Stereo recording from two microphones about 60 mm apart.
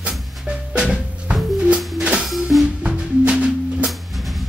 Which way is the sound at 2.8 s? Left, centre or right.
Centre.